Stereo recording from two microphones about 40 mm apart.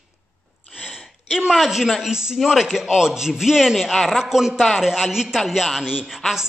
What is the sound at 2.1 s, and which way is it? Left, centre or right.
A man's voice, centre.